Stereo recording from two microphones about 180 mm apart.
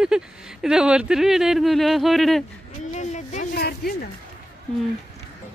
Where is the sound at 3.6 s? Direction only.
60° left (ahead or behind).